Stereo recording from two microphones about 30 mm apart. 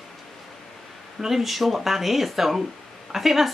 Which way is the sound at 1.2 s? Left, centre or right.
Centre.